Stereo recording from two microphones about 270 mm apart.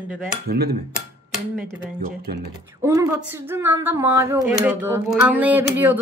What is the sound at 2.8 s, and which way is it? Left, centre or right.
Speech, centre.